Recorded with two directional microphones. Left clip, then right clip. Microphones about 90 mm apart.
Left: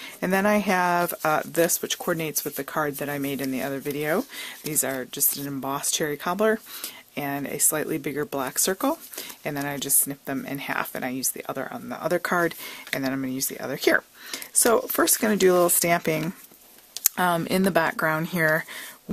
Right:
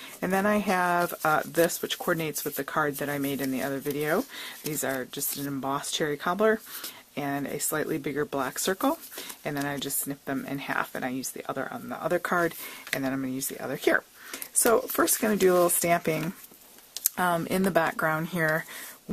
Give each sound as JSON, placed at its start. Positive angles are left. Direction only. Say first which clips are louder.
{"t": 0.2, "sound": "speech", "louder": "left 3 dB", "side_deg": 35}
{"t": 5.5, "sound": "speech", "louder": "left 1 dB", "side_deg": 30}